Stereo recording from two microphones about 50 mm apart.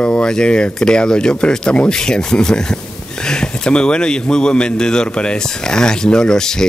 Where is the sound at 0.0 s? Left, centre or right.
Left.